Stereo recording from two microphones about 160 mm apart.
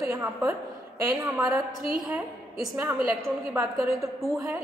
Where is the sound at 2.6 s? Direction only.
10° right (ahead or behind).